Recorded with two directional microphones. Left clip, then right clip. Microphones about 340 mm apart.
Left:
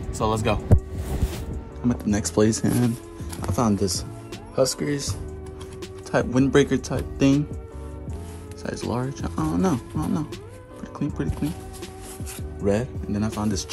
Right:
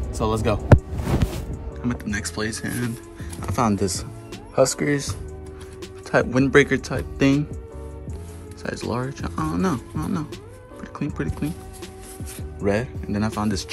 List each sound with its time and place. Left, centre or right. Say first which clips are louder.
0.1 s speech: even; centre
1.3 s music: right 1 dB; centre
3.3 s speech: right 2 dB; centre
8.6 s speech: right 1 dB; centre
10.8 s music: even; centre
12.5 s speech: right 1 dB; centre